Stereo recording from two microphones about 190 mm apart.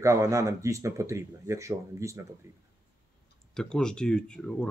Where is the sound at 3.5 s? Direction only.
5° left (ahead or behind).